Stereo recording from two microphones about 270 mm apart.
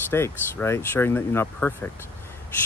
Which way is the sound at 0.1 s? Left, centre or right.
Centre.